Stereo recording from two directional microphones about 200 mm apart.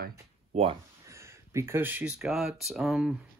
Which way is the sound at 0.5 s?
35° right (ahead or behind).